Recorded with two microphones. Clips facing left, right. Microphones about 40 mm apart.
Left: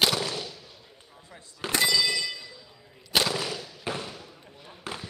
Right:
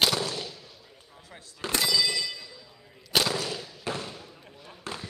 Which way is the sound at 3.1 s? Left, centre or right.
Centre.